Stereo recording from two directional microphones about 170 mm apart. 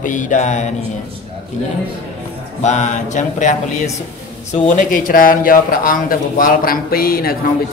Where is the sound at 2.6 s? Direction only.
45° left (ahead or behind).